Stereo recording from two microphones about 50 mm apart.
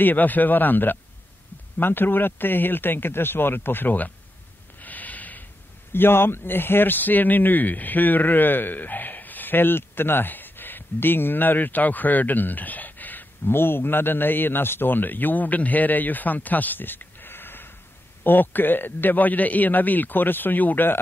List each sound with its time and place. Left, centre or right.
0.0 s a man's voice: left
4.7 s snort: left
5.9 s speech: left
13.5 s a man's voice: left